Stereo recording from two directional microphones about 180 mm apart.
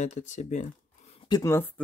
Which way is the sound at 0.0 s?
40° left (ahead or behind).